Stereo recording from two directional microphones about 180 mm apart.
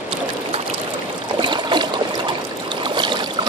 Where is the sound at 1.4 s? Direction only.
25° right (ahead or behind).